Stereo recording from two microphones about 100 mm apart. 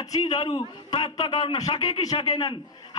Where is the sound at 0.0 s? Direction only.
40° left (ahead or behind).